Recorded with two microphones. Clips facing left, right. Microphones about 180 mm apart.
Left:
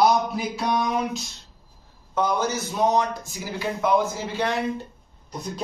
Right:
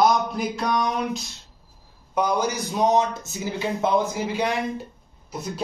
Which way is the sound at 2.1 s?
15° right (ahead or behind).